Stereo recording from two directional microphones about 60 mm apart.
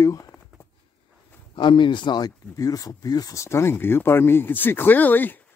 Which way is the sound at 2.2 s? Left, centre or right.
Left.